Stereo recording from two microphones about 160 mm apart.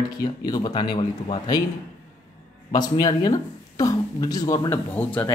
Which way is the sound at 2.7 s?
25° left (ahead or behind).